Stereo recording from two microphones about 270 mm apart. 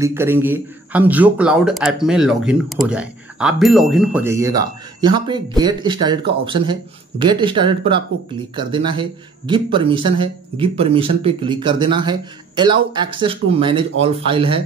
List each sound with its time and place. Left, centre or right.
0.0 s speech: centre
9.5 s speech: centre